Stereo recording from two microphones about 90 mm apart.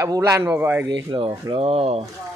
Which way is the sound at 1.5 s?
90° right.